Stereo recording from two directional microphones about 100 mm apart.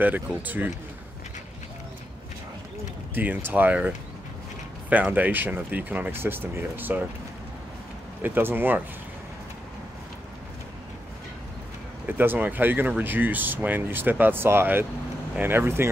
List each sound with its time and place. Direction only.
0.0 s speech: 15° right (ahead or behind)
3.2 s speech: 20° right (ahead or behind)
5.1 s speech: 20° right (ahead or behind)
8.2 s speech: 20° right (ahead or behind)
12.1 s speech: 20° right (ahead or behind)